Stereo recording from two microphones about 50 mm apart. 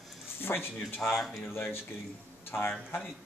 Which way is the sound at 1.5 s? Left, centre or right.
Left.